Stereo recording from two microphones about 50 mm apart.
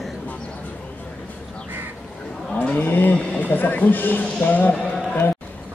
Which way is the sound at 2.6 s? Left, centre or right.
Left.